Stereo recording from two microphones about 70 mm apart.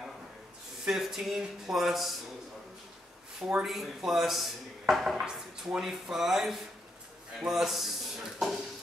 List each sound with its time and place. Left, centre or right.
0.8 s speech: centre
3.3 s speech: centre
3.6 s speech: centre